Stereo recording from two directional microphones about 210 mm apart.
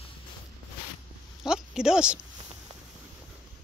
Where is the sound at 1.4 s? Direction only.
5° right (ahead or behind).